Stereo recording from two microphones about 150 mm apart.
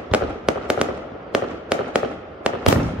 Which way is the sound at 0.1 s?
5° right (ahead or behind).